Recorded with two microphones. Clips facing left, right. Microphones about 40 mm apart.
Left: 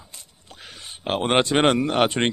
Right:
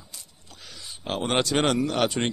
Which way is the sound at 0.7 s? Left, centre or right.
Left.